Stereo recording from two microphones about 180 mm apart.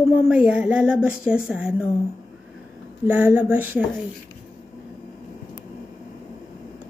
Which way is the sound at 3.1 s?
10° right (ahead or behind).